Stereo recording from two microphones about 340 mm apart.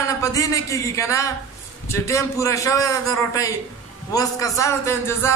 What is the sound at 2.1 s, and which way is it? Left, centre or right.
Speech, centre.